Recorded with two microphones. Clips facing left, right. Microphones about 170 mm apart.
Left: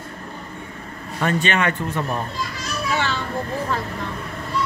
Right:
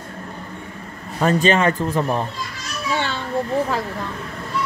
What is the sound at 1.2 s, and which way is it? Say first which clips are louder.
Speech: right 4 dB; 35° right (ahead or behind).